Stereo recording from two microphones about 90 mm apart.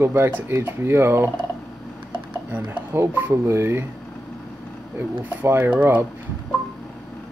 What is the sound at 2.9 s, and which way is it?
Speech, 30° right (ahead or behind).